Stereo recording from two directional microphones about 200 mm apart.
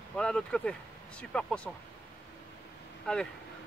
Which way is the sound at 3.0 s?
5° left (ahead or behind).